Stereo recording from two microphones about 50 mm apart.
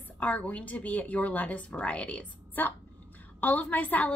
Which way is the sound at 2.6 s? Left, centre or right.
Left.